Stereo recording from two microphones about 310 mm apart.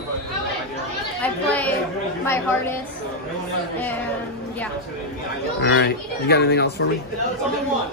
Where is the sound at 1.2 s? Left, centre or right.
Centre.